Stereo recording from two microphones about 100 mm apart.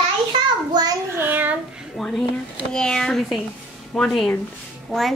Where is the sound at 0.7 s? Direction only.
45° right (ahead or behind).